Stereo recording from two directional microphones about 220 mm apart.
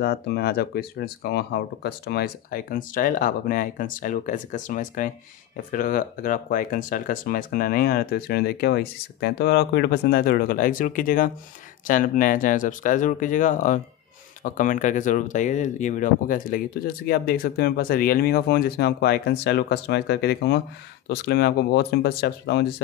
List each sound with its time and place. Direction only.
0.0 s speech: 45° left (ahead or behind)